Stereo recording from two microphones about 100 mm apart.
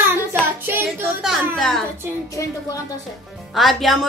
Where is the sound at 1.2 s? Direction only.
Centre (ahead or behind).